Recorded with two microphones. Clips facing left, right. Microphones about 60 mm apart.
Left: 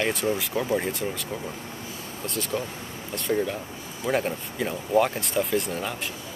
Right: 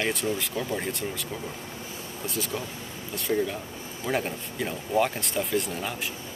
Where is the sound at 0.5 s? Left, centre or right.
Centre.